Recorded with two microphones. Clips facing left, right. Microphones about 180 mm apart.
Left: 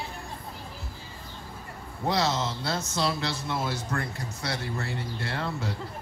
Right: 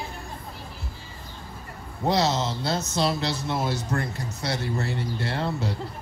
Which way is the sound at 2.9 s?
20° right (ahead or behind).